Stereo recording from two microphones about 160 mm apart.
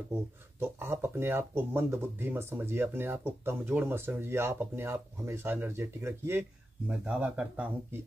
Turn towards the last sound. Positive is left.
turn(degrees=-10)  # may be behind; listen again after turning